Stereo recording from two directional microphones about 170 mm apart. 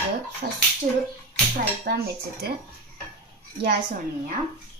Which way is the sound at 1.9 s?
65° right (ahead or behind).